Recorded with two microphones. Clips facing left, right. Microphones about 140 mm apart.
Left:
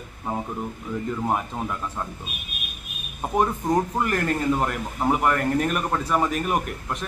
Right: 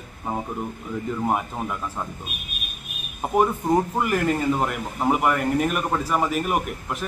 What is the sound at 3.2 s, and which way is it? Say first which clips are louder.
A man's voice: right 2 dB; 5° right (ahead or behind).